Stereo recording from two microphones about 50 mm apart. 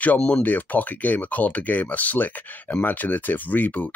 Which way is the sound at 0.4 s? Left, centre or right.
Left.